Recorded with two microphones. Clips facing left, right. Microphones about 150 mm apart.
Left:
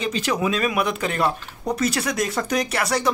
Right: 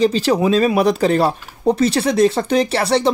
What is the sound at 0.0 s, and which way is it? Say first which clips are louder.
Speech: right 8 dB; 30° right (ahead or behind).